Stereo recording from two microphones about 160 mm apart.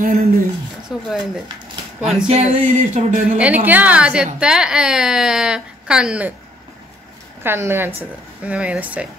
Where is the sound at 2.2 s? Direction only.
50° right (ahead or behind).